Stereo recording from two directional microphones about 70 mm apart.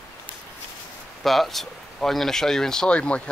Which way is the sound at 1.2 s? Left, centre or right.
Centre.